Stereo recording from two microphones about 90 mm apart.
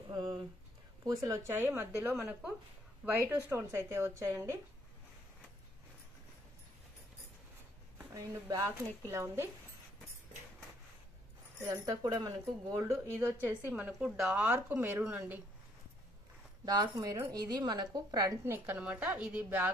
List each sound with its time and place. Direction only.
0.1 s speech: 45° right (ahead or behind)
1.5 s speech: 25° right (ahead or behind)
8.1 s speech: 40° right (ahead or behind)
11.6 s speech: 40° right (ahead or behind)
12.0 s a woman's voice: 50° right (ahead or behind)
12.7 s speech: 30° right (ahead or behind); by 14.3 s 5° right (ahead or behind)
14.3 s a woman's voice: 15° right (ahead or behind)
16.6 s a woman's voice: 50° right (ahead or behind)
18.4 s a woman's voice: 25° right (ahead or behind)